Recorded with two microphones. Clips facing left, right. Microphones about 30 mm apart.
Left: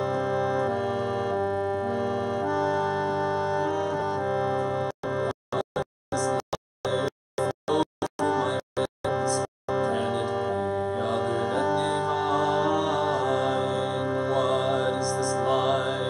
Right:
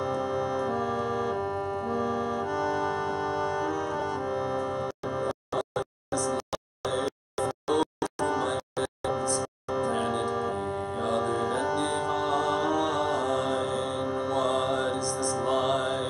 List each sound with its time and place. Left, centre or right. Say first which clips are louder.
0.0 s organ: left 3 dB; centre
4.2 s music: left 3 dB; centre